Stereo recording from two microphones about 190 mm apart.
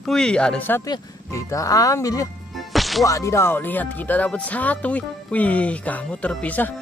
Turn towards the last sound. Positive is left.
turn(degrees=5)  # may be behind; listen again after turning